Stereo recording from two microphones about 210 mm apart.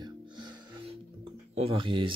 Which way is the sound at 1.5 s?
25° right (ahead or behind).